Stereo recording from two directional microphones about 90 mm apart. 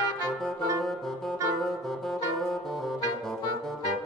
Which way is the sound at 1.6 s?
5° left (ahead or behind).